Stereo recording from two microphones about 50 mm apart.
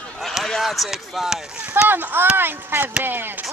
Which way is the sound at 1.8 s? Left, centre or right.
Right.